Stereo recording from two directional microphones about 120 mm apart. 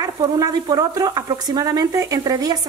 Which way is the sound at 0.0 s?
35° right (ahead or behind).